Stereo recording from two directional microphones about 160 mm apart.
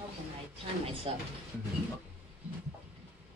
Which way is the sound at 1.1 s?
30° right (ahead or behind).